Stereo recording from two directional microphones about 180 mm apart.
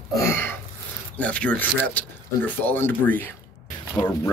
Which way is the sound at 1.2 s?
5° left (ahead or behind).